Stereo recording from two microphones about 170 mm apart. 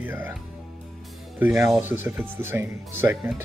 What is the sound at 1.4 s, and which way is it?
Speech, 10° right (ahead or behind).